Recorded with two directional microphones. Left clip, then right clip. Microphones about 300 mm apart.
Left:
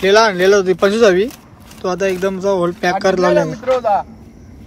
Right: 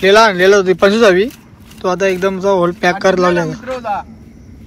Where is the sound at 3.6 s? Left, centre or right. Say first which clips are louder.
Left 5 dB; left.